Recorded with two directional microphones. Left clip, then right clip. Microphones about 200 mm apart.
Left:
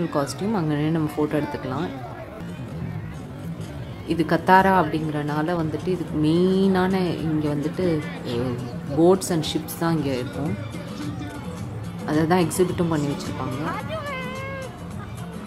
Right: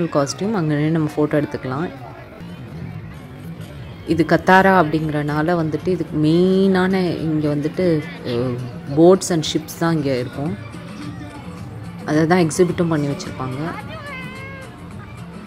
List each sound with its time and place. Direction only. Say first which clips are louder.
0.1 s speech: right 5 dB; 20° right (ahead or behind)
4.1 s speech: right 4 dB; 20° right (ahead or behind)
8.9 s speech: right 6 dB; 20° right (ahead or behind)
12.1 s speech: right 4 dB; 20° right (ahead or behind)
13.7 s music: left 1 dB; 55° left (ahead or behind)